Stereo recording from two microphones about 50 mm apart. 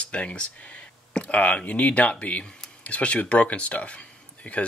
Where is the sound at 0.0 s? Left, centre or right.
Left.